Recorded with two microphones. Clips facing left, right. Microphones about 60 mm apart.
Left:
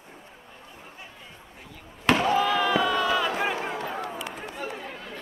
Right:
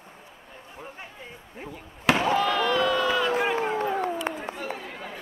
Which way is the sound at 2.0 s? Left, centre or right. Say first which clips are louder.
Even; centre.